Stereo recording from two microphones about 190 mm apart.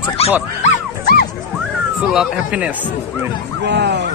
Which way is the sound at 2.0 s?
5° right (ahead or behind).